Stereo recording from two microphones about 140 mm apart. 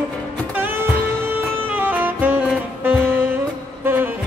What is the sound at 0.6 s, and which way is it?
Saxophone, 15° right (ahead or behind).